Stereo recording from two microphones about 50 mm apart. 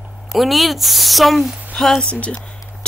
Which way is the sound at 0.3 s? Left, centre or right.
Centre.